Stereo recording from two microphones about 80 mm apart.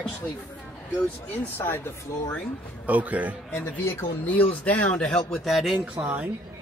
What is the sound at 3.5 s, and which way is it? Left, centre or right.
Speech, left.